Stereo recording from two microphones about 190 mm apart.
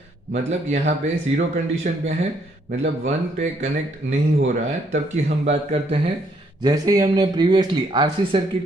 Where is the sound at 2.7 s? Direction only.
35° right (ahead or behind).